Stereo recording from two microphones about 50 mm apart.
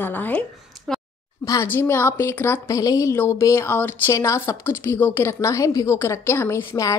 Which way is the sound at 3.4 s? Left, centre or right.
Left.